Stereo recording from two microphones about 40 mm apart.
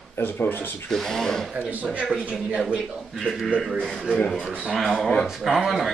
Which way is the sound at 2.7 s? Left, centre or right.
Centre.